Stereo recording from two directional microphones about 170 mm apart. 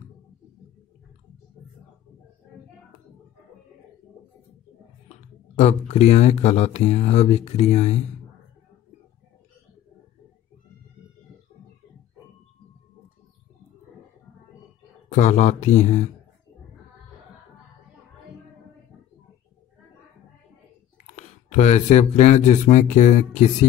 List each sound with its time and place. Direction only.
5.6 s speech: 40° left (ahead or behind)
15.0 s speech: 45° left (ahead or behind)
21.1 s speech: 45° left (ahead or behind)